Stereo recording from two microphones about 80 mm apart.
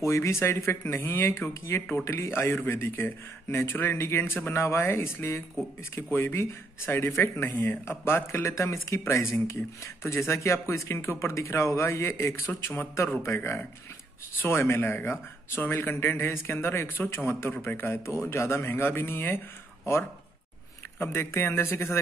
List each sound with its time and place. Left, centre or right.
0.0 s a man's voice: left
21.0 s a man's voice: left